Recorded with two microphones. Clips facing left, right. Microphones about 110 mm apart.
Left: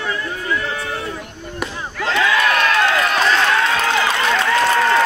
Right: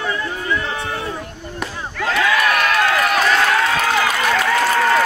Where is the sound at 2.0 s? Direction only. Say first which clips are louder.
Even; 25° left (ahead or behind).